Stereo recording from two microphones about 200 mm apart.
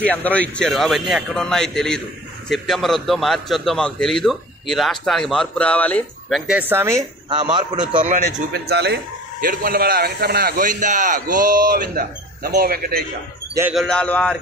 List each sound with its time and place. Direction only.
0.0 s a man's voice: 5° left (ahead or behind); by 7.0 s 10° right (ahead or behind)
7.5 s a man's voice: 20° right (ahead or behind)
8.6 s speech: 55° right (ahead or behind)
13.7 s a man's voice: 5° left (ahead or behind)